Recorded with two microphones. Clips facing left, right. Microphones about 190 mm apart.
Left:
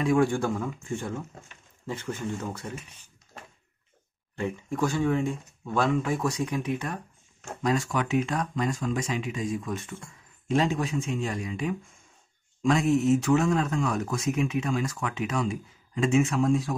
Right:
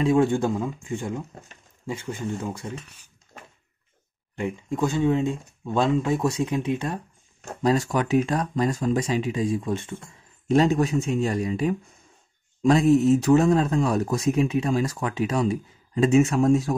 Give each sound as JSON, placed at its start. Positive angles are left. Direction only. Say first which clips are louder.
{"t": 0.0, "sound": "speech", "louder": "right 3 dB", "side_deg": -25}
{"t": 4.4, "sound": "speech", "louder": "right 2 dB", "side_deg": -15}
{"t": 7.4, "sound": "speech", "louder": "right 4 dB", "side_deg": -35}
{"t": 10.5, "sound": "speech", "louder": "right 6 dB", "side_deg": -40}